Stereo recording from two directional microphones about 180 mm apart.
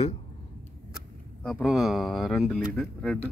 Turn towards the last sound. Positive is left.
turn(degrees=5)  # may be behind; listen again after turning